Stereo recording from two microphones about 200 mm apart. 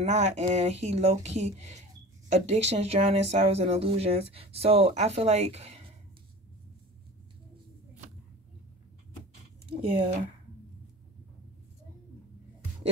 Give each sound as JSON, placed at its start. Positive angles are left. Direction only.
{"t": 0.0, "sound": "speech", "side_deg": -35}
{"t": 9.7, "sound": "speech", "side_deg": -30}